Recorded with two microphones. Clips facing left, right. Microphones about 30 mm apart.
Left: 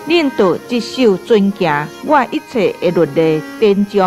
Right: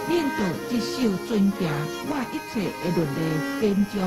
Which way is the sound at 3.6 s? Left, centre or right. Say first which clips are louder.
Left 13 dB; left.